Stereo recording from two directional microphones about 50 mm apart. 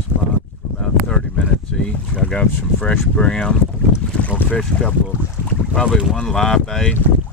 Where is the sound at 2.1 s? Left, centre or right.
Left.